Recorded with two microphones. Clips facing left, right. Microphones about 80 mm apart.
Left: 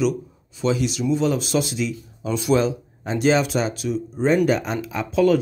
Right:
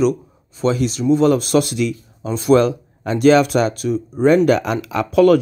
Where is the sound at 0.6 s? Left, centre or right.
Right.